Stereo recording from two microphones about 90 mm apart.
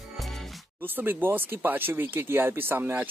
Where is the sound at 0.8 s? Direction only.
25° right (ahead or behind).